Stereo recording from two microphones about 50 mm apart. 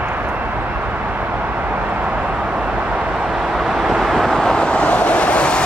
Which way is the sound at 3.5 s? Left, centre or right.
Centre.